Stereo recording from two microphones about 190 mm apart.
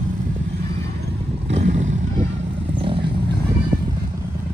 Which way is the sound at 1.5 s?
40° right (ahead or behind).